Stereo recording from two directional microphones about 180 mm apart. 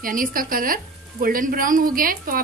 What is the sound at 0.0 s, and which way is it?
A woman's voice, 50° right (ahead or behind).